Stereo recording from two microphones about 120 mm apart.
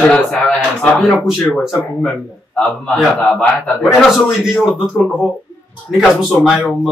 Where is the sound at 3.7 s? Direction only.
Centre (ahead or behind).